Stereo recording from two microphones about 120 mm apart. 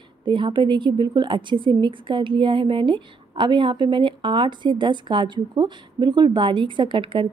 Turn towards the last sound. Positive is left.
turn(degrees=-45)  # may be behind; listen again after turning